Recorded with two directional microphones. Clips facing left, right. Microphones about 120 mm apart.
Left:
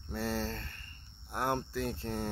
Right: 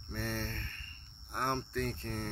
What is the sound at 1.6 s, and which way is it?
Speech, 30° left (ahead or behind).